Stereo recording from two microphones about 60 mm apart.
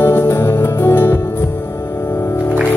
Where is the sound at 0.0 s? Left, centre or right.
Left.